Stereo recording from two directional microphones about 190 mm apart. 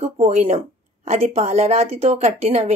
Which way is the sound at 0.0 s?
35° right (ahead or behind).